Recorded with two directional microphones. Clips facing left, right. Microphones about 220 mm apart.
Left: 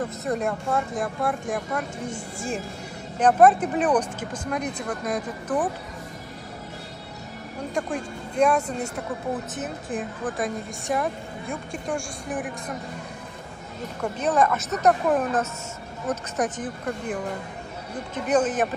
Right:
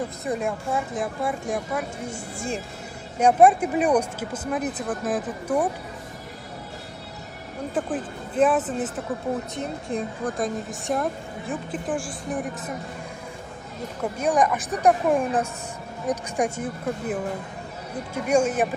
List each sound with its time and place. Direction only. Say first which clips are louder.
0.2 s a woman's voice: left 1 dB; centre (ahead or behind)
7.7 s a woman's voice: right 1 dB; 5° right (ahead or behind)
14.0 s speech: even; 10° right (ahead or behind)